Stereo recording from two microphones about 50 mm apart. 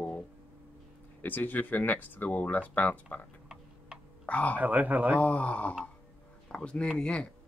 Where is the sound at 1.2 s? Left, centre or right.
Left.